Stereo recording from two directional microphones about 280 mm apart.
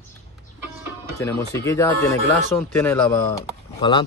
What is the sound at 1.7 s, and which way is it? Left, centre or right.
Speech, centre.